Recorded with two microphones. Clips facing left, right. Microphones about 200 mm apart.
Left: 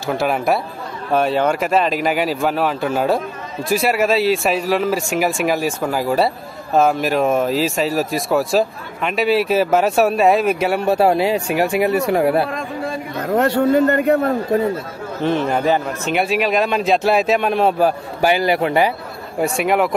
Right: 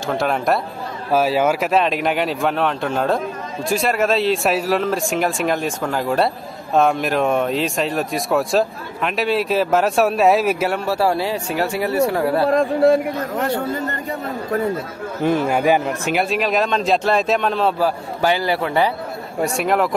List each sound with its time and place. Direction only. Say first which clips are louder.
0.0 s speech: left 1 dB; 5° left (ahead or behind)
10.9 s speech: left 6 dB; 20° left (ahead or behind)
13.4 s a man's voice: left 10 dB; 65° left (ahead or behind)
15.2 s speech: right 1 dB; 10° right (ahead or behind)
16.2 s speech: left 3 dB; centre (ahead or behind)
19.4 s speech: left 2 dB; centre (ahead or behind)